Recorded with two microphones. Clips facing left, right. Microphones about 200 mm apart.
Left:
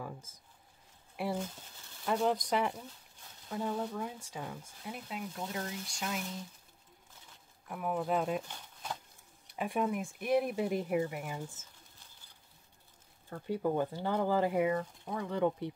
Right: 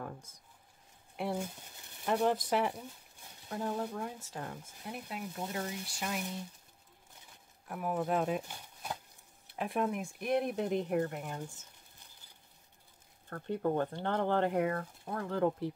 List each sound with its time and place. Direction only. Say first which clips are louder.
1.1 s speech: even; 5° left (ahead or behind)
1.4 s boiling: even; 15° right (ahead or behind)
2.0 s speech: right 1 dB; 5° right (ahead or behind)
7.6 s speech: even; 5° right (ahead or behind)
13.3 s speech: even; 5° left (ahead or behind)